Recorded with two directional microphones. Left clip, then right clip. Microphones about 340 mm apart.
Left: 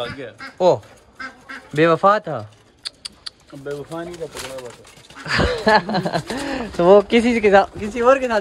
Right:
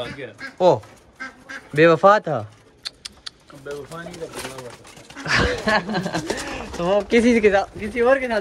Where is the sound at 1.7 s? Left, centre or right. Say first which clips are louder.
Right 1 dB; centre.